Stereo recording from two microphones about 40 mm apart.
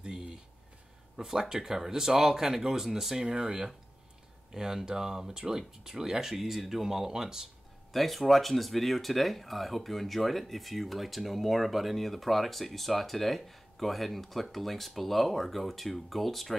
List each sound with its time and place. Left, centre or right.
0.0 s a sound: right
1.1 s speech: centre
7.9 s speech: centre